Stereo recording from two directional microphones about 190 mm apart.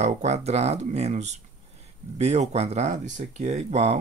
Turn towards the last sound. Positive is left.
turn(degrees=-35)  # may be behind; listen again after turning